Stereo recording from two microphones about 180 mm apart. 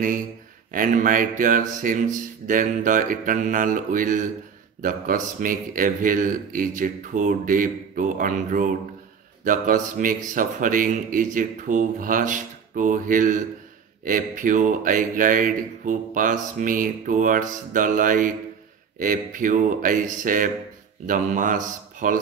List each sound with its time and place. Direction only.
0.7 s speech: 45° right (ahead or behind)